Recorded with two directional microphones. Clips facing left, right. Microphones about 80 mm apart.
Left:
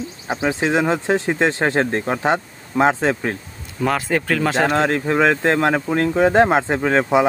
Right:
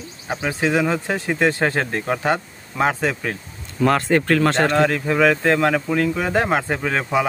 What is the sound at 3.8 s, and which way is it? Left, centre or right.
Speech, centre.